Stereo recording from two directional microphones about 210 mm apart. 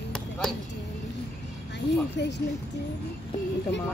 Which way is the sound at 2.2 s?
55° left (ahead or behind).